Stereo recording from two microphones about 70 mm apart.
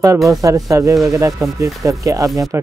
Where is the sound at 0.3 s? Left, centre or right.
Right.